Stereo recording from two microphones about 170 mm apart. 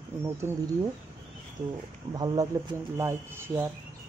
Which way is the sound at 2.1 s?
25° right (ahead or behind).